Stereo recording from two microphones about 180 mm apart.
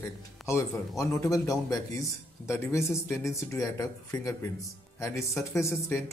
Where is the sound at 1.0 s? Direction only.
20° left (ahead or behind).